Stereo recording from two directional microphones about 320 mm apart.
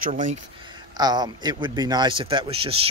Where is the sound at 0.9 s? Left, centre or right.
Centre.